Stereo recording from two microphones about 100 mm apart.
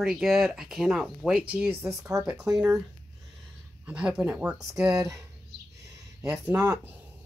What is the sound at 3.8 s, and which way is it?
Speech, 10° right (ahead or behind).